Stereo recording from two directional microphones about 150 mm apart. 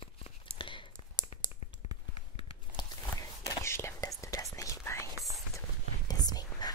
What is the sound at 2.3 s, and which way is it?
Whispering, 35° left (ahead or behind).